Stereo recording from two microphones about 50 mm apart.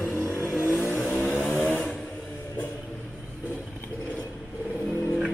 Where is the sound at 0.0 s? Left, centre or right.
Left.